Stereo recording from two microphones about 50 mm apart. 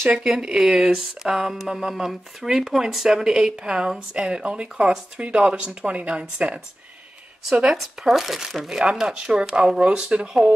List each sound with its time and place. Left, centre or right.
0.1 s speech: centre
7.7 s speech: centre
9.0 s speech: centre